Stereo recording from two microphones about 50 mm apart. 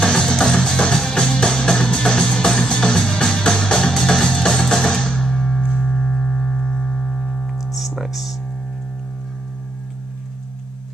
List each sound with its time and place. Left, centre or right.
0.0 s music: centre
5.9 s a sound: centre
8.0 s hum: centre